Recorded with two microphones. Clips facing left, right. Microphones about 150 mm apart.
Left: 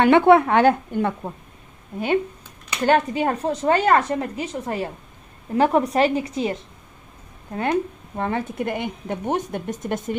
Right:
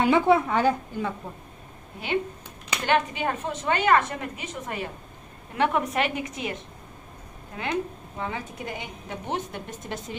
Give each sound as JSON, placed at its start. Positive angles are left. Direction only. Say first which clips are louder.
{"t": 0.0, "sound": "a woman's voice", "louder": "left 6 dB", "side_deg": 65}
{"t": 2.9, "sound": "a woman's voice", "louder": "left 5 dB", "side_deg": 40}
{"t": 7.5, "sound": "a woman's voice", "louder": "left 6 dB", "side_deg": 50}